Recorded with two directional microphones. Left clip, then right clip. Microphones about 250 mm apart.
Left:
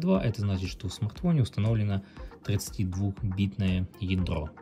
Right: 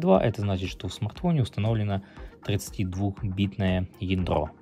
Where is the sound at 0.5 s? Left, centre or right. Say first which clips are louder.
Right 5 dB; centre.